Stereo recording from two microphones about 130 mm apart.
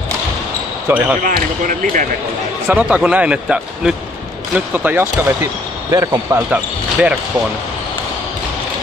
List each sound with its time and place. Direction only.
0.8 s speech: 15° right (ahead or behind)
1.2 s speech: 90° right
2.7 s speech: 10° right (ahead or behind)
6.5 s speech: 10° right (ahead or behind)